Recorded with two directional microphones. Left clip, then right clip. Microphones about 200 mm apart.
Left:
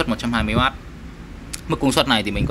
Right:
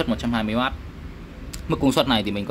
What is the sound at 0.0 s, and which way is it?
Speech, 5° right (ahead or behind).